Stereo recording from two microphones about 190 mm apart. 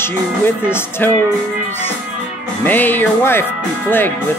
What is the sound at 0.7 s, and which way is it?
Music, 10° left (ahead or behind).